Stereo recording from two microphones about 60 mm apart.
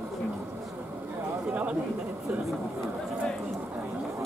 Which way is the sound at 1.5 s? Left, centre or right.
Right.